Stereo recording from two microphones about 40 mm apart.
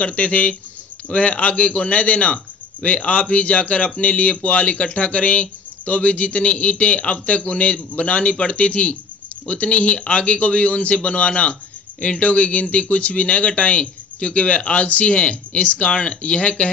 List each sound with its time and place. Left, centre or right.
0.0 s a man's voice: left